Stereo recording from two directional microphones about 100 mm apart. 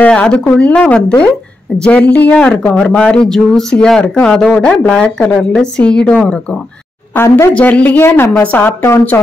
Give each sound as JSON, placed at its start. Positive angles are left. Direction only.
{"t": 0.0, "sound": "speech", "side_deg": 10}
{"t": 7.2, "sound": "a woman's voice", "side_deg": 25}